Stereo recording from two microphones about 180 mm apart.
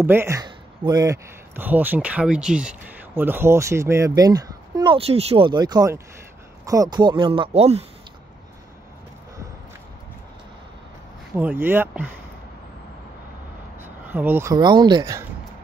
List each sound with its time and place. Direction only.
0.0 s speech: 15° right (ahead or behind); by 7.8 s 35° right (ahead or behind)
11.3 s speech: 10° right (ahead or behind)
13.8 s a sound: 10° right (ahead or behind)
14.5 s speech: 25° right (ahead or behind)